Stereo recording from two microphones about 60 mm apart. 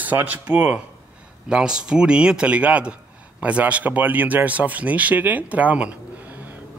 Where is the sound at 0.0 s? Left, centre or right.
Right.